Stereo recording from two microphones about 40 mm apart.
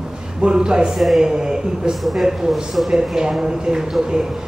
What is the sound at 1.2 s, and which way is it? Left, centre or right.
Speech, centre.